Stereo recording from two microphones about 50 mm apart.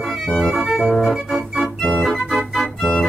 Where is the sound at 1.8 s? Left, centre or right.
Centre.